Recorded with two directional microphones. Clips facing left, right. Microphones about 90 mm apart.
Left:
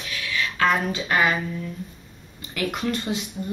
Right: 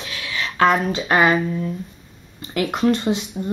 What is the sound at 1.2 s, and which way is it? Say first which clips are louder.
Speech: right 6 dB; 25° right (ahead or behind).